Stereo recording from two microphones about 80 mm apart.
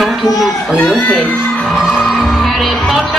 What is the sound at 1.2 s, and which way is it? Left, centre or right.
Music, centre.